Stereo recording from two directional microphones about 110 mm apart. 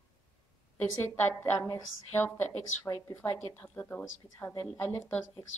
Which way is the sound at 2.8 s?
30° left (ahead or behind).